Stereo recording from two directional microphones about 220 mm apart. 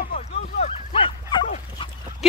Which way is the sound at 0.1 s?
30° left (ahead or behind).